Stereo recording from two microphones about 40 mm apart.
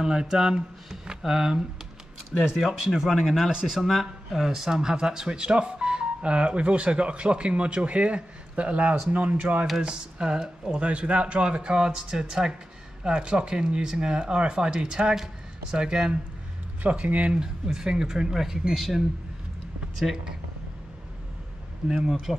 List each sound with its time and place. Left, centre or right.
0.0 s speech: centre; by 9.7 s right
9.8 s speech: right
10.8 s speech: right
11.7 s speech: centre
16.9 s speech: right
17.4 s speech: centre
21.8 s speech: centre